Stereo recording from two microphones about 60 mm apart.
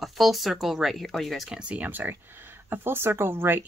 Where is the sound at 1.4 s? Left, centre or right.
Centre.